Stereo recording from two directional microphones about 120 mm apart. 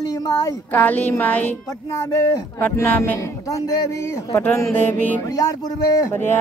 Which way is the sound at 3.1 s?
30° left (ahead or behind).